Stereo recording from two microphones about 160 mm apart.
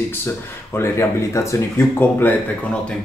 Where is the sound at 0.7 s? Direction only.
15° left (ahead or behind).